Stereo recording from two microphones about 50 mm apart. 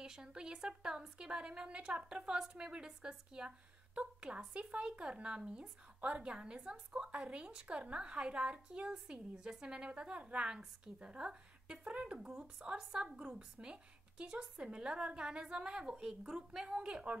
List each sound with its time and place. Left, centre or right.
0.0 s a woman's voice: centre
5.9 s a woman's voice: right